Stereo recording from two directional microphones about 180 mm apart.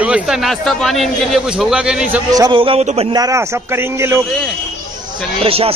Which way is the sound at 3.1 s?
20° right (ahead or behind).